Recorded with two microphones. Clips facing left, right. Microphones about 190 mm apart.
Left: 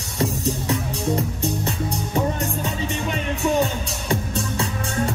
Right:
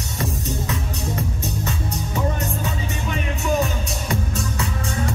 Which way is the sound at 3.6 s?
30° left (ahead or behind).